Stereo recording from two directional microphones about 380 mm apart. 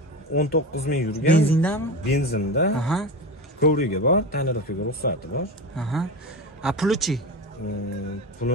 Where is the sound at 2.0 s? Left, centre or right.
Left.